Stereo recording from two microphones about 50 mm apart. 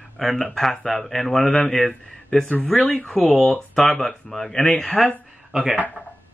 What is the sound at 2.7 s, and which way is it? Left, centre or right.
Speech, centre.